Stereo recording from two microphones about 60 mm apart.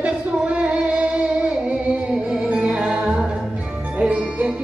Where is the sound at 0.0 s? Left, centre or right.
Centre.